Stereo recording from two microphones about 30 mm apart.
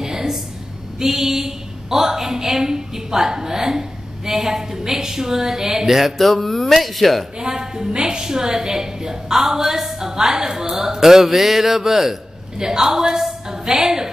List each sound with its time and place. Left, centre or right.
0.0 s a sound: centre
0.9 s a woman's voice: centre
6.1 s music: centre
7.3 s a woman's voice: centre
12.5 s a woman's voice: right